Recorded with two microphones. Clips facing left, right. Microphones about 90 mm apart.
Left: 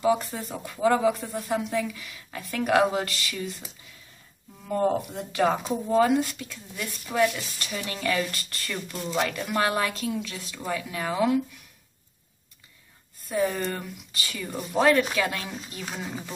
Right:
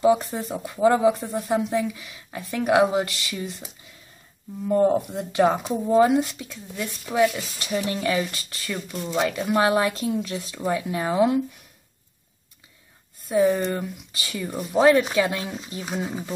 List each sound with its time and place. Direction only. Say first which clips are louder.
0.0 s speech: right 4 dB; 25° right (ahead or behind)
4.6 s speech: right 5 dB; 20° right (ahead or behind)
13.3 s speech: right 6 dB; 15° right (ahead or behind)